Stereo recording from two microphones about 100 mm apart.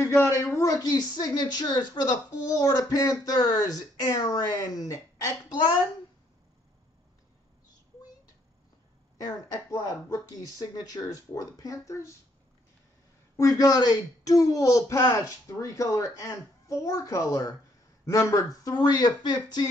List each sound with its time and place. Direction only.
0.0 s a woman's voice: 25° left (ahead or behind)
0.6 s a woman's voice: 40° left (ahead or behind)
9.2 s a woman's voice: 30° left (ahead or behind)
13.4 s a woman's voice: 35° left (ahead or behind)